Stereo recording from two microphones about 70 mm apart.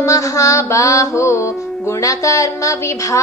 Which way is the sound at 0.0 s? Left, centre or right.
Left.